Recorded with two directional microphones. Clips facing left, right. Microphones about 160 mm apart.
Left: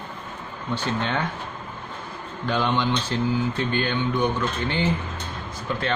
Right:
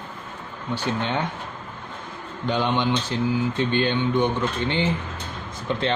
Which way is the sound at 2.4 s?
20° right (ahead or behind).